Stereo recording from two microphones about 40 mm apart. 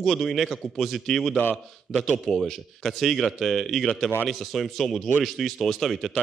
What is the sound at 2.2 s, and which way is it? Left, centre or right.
A man's voice, centre.